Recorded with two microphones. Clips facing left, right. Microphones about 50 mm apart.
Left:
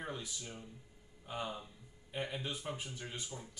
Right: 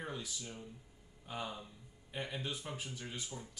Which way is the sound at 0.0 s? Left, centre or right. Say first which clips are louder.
Even; centre.